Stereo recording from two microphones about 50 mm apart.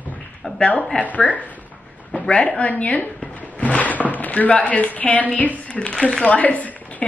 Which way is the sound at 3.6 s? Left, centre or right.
Left.